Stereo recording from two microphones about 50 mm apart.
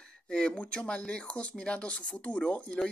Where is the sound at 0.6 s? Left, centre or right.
Left.